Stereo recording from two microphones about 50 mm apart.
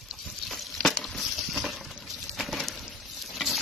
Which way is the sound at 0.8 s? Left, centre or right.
Centre.